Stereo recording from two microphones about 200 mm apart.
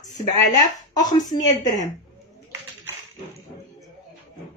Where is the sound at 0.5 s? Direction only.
20° left (ahead or behind).